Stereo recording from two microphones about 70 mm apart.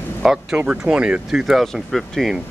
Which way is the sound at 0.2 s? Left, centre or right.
Centre.